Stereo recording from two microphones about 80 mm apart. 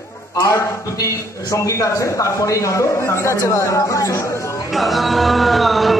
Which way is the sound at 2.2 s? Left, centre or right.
Left.